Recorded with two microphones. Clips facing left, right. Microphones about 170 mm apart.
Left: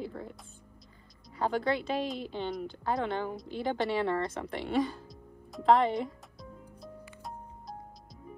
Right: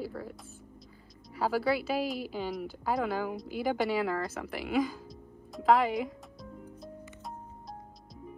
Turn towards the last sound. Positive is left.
turn(degrees=0)  # may be behind; listen again after turning